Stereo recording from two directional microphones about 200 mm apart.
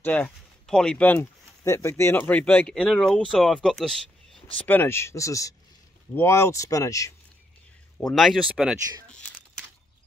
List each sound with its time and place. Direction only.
0.0 s speech: 5° left (ahead or behind)
8.0 s speech: centre (ahead or behind)